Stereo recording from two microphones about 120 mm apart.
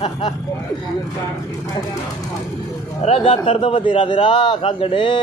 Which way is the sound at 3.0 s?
55° left (ahead or behind).